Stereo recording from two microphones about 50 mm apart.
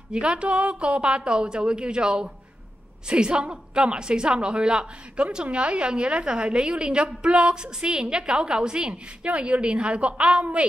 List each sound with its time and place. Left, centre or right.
0.1 s a woman's voice: centre